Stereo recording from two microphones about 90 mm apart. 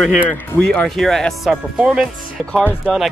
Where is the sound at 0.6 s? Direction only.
10° left (ahead or behind).